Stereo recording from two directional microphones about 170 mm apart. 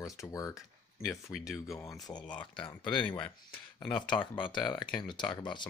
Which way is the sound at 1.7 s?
20° left (ahead or behind).